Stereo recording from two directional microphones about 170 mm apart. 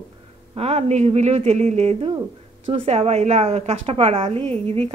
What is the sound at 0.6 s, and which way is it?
A woman's voice, 40° right (ahead or behind).